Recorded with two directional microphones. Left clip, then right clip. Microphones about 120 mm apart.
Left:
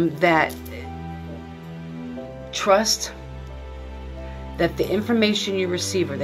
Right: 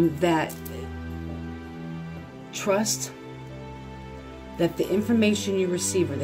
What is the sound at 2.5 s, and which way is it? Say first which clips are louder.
Speech: left 7 dB; 45° right (ahead or behind).